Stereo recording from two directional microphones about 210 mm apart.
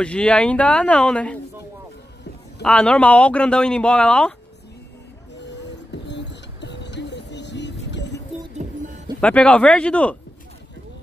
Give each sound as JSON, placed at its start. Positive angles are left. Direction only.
{"t": 0.0, "sound": "speech", "side_deg": 5}
{"t": 2.6, "sound": "speech", "side_deg": 5}
{"t": 5.4, "sound": "music", "side_deg": 55}
{"t": 9.2, "sound": "speech", "side_deg": 5}